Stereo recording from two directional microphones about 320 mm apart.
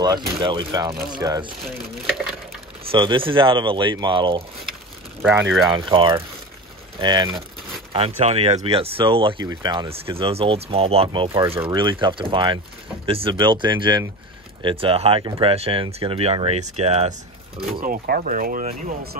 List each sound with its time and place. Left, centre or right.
0.0 s speech: centre
2.9 s speech: centre
5.7 s speech: centre